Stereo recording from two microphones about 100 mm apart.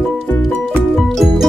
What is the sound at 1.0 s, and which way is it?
Music, centre (ahead or behind).